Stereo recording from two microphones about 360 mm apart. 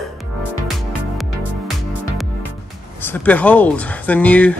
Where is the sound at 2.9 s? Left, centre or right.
Centre.